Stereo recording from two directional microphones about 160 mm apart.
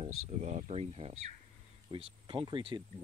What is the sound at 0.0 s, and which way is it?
Speech, 45° right (ahead or behind).